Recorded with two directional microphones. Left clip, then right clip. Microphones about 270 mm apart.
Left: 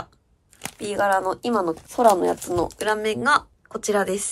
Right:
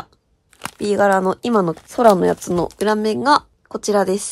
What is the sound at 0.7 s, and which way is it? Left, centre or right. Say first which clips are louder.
Speech: right 6 dB; right.